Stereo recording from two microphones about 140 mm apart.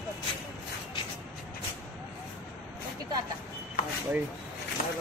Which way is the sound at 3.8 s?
75° left (ahead or behind).